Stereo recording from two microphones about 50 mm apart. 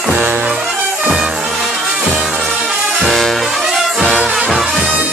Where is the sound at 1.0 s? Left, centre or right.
Centre.